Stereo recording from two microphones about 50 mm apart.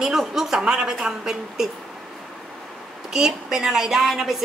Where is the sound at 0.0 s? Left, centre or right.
Centre.